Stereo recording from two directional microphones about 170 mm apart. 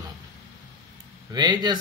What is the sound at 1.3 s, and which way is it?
Speech, 25° right (ahead or behind).